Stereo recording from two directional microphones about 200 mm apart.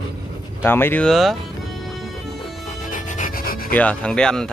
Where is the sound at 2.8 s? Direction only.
40° left (ahead or behind).